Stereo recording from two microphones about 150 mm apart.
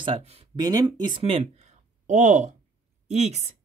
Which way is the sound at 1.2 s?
45° right (ahead or behind).